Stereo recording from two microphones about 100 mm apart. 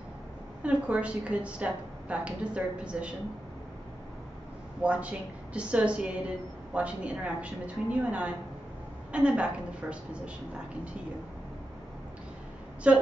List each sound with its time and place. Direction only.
0.6 s a woman's voice: 15° right (ahead or behind)
4.8 s a woman's voice: 10° right (ahead or behind)
12.9 s a woman's voice: 10° right (ahead or behind)